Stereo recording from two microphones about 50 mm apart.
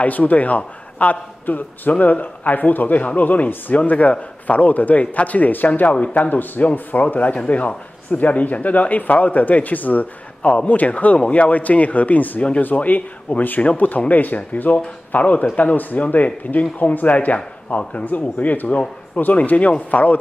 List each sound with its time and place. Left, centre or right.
0.0 s a man's voice: left